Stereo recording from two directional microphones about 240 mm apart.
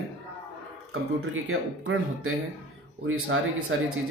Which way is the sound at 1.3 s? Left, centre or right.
Right.